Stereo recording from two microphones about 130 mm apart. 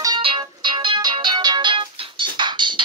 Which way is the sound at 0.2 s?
40° right (ahead or behind).